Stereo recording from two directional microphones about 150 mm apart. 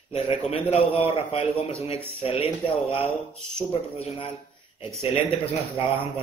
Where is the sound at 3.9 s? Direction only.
35° left (ahead or behind).